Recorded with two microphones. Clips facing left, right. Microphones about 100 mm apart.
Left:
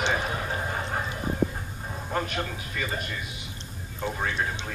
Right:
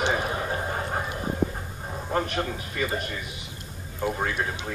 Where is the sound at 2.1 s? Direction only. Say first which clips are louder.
Right 3 dB; 40° right (ahead or behind).